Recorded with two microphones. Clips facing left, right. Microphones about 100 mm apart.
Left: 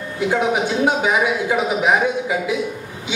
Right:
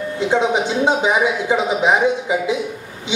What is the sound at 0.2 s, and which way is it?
Speech, 20° right (ahead or behind).